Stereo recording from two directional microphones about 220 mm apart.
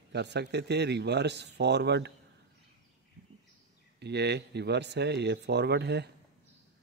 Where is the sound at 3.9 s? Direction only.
50° right (ahead or behind).